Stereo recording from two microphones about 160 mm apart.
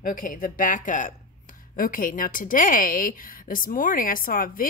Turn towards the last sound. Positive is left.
turn(degrees=60)  # may be behind; listen again after turning